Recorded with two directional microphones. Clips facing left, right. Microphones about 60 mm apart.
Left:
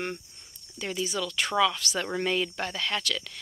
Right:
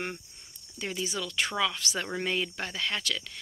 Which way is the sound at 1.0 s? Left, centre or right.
Centre.